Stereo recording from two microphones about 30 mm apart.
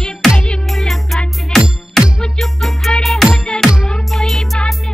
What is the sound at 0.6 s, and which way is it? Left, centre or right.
Music, centre.